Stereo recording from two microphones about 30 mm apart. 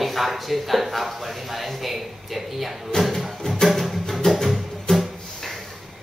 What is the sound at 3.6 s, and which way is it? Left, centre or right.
Music, centre.